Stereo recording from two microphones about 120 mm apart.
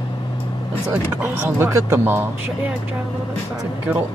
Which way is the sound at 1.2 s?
15° right (ahead or behind).